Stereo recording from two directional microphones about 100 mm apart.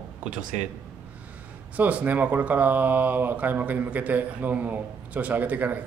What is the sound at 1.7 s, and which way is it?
Speech, 15° right (ahead or behind).